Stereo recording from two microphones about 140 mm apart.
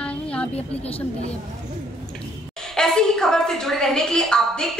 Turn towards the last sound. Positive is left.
turn(degrees=5)  # may be behind; listen again after turning